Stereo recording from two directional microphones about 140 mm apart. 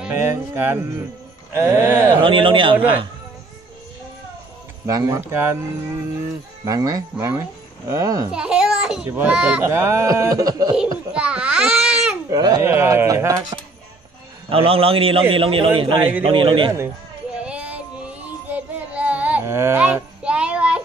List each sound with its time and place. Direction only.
0.0 s speech: 15° right (ahead or behind)
2.2 s a man's voice: 40° right (ahead or behind)
4.8 s speech: 20° right (ahead or behind)
6.6 s speech: 25° right (ahead or behind)
8.3 s a child's voice: 5° right (ahead or behind); by 10.7 s 25° right (ahead or behind)
11.1 s babbling: 10° right (ahead or behind)
12.3 s speech: 25° right (ahead or behind)
14.5 s a man's voice: 45° right (ahead or behind)
17.4 s child singing: 10° right (ahead or behind)